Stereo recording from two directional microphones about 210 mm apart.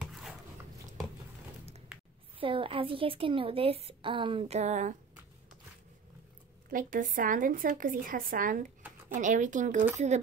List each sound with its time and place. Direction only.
0.1 s dog: centre (ahead or behind)
1.9 s a sound: 5° right (ahead or behind)
2.4 s a woman's voice: 25° right (ahead or behind)
6.7 s speech: 40° right (ahead or behind)